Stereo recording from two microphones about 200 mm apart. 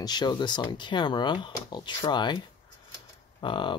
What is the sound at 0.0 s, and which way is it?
Speech, 20° left (ahead or behind).